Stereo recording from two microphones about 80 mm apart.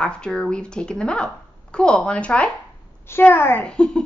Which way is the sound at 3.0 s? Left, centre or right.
Left.